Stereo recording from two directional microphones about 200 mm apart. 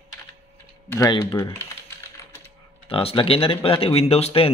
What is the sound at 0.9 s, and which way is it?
Speech, 20° left (ahead or behind).